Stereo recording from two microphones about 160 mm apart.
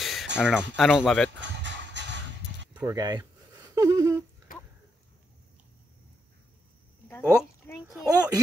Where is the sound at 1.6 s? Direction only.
90° right.